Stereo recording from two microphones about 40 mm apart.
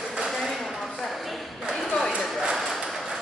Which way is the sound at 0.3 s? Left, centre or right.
Centre.